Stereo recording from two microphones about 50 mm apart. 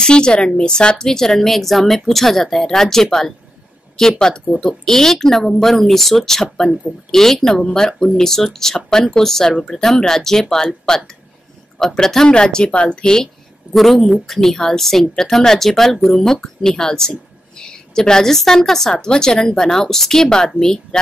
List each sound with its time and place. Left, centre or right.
0.0 s a woman's voice: centre
13.7 s a woman's voice: centre